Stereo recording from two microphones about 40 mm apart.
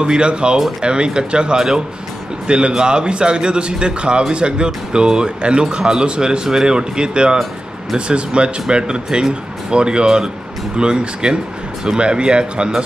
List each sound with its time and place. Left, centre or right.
0.0 s speech: right